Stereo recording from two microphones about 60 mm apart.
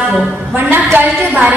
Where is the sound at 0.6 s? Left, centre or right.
Right.